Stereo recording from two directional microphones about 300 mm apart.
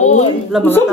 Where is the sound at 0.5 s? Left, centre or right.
Centre.